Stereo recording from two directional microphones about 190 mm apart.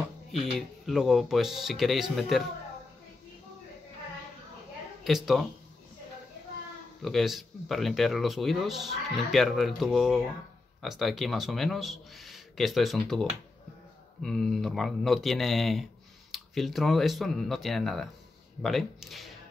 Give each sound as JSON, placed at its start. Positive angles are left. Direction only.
{"t": 0.3, "sound": "speech", "side_deg": 0}
{"t": 5.0, "sound": "speech", "side_deg": 0}
{"t": 7.0, "sound": "a man's voice", "side_deg": 0}